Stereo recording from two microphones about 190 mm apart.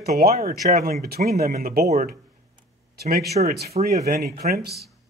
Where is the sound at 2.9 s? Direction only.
55° right (ahead or behind).